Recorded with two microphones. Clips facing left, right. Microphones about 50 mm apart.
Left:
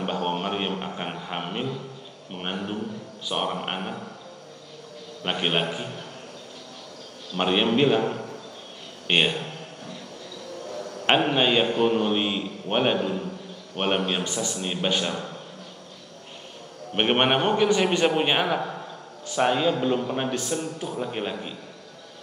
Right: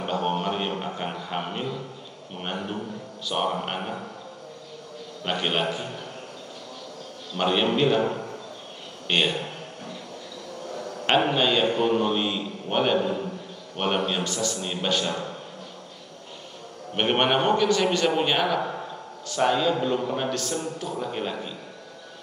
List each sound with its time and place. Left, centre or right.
0.0 s music: centre
0.9 s a sound: centre
2.5 s a man's voice: centre
5.2 s a man's voice: centre
7.3 s a man's voice: centre
9.0 s speech: left
11.3 s a man's voice: centre
16.9 s a man's voice: centre
18.6 s a sound: centre
19.2 s a man's voice: centre